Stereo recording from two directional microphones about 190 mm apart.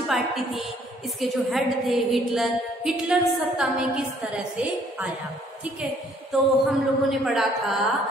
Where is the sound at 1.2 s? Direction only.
Centre (ahead or behind).